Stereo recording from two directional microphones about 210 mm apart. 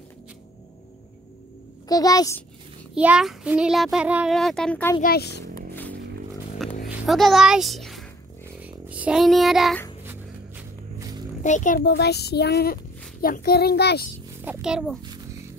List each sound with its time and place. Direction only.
1.9 s a child's voice: 15° left (ahead or behind)
2.9 s a child's voice: 5° right (ahead or behind)
5.0 s speech: 50° left (ahead or behind)
5.8 s a sound: 10° left (ahead or behind)
6.9 s a child's voice: centre (ahead or behind)
8.6 s child singing: 5° right (ahead or behind)
11.0 s music: 20° right (ahead or behind)
11.4 s a child's voice: 35° left (ahead or behind)
11.8 s speech: 55° left (ahead or behind)
14.4 s a child's voice: 5° right (ahead or behind)